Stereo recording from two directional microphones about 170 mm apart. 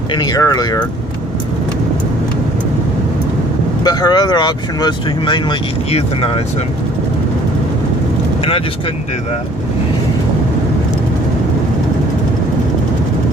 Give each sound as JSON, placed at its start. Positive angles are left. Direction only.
{"t": 0.1, "sound": "speech", "side_deg": 25}
{"t": 3.8, "sound": "speech", "side_deg": 25}